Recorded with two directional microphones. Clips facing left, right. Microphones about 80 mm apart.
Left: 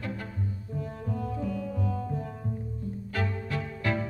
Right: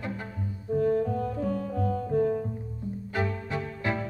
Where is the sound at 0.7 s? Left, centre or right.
Right.